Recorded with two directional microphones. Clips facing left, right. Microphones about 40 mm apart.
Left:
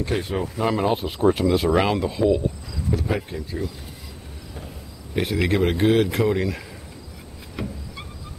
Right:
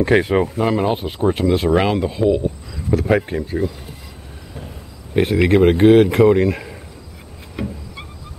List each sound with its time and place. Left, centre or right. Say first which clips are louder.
0.0 s speech: right 10 dB; right
0.6 s speech: right 3 dB; centre
2.9 s speech: right 9 dB; right
5.1 s speech: right 7 dB; right